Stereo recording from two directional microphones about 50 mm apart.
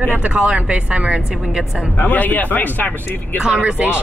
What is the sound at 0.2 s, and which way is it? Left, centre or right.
A woman's voice, right.